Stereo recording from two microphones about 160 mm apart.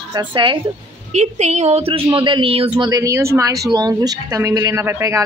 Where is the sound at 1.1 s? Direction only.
45° right (ahead or behind).